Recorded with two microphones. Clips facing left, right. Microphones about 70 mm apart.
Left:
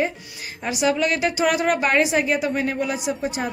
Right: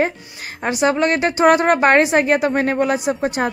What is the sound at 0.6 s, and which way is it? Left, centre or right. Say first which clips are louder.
A woman's voice: right 4 dB; right.